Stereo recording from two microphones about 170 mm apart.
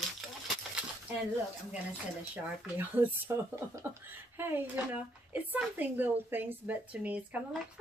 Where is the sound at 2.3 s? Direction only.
10° right (ahead or behind).